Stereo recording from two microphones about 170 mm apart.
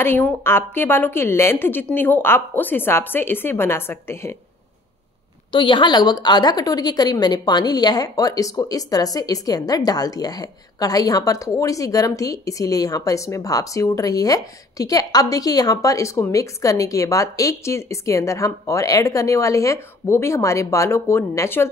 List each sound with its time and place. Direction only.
0.0 s a woman's voice: 15° left (ahead or behind)
5.5 s a woman's voice: 30° left (ahead or behind); by 21.6 s 15° left (ahead or behind)